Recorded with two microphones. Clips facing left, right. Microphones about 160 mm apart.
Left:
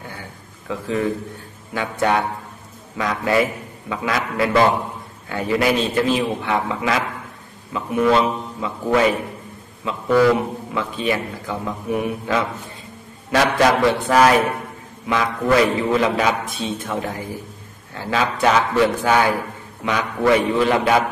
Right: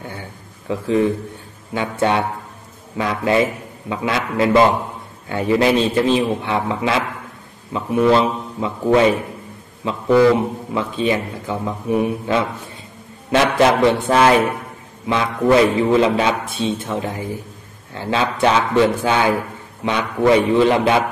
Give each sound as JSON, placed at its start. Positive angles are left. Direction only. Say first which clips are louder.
{"t": 0.7, "sound": "a man's voice", "louder": "right 5 dB", "side_deg": -30}
{"t": 10.7, "sound": "a man's voice", "louder": "right 3 dB", "side_deg": -25}